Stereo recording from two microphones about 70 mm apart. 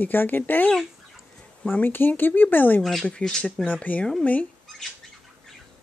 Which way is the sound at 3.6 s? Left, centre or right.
Left.